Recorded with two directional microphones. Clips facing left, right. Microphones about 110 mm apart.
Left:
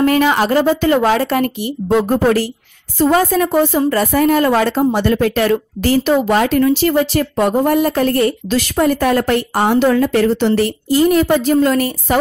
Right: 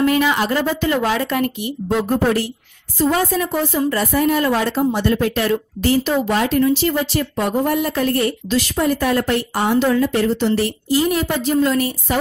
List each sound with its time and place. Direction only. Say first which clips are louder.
0.0 s a woman's voice: left 4 dB; 45° left (ahead or behind)
3.0 s a woman's voice: left 5 dB; 55° left (ahead or behind)
10.9 s a woman's voice: left 7 dB; 45° left (ahead or behind)
11.6 s a woman's voice: left 3 dB; 55° left (ahead or behind)